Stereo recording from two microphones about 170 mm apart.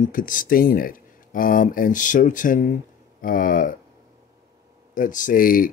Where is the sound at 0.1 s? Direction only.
50° left (ahead or behind).